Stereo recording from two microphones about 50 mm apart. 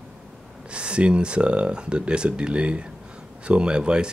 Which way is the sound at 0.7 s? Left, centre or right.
Right.